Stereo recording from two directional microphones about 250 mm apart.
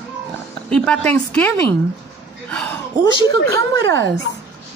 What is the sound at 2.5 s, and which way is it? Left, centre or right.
Speech, centre.